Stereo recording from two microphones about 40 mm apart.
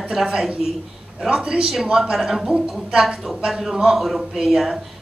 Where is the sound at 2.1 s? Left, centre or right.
Centre.